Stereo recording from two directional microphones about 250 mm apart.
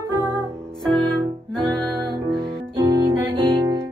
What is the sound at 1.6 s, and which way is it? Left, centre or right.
Music, centre.